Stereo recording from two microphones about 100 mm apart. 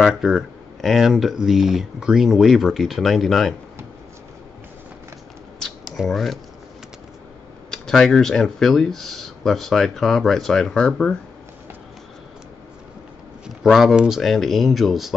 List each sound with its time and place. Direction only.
0.0 s speech: 5° right (ahead or behind)
5.6 s a sound: 5° left (ahead or behind)
7.7 s speech: 5° left (ahead or behind)
13.6 s speech: centre (ahead or behind)